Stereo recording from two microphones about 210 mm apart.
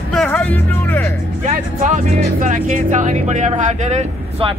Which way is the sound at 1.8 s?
35° right (ahead or behind).